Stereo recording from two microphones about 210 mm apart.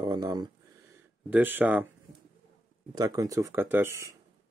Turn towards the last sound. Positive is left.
turn(degrees=-10)  # may be behind; listen again after turning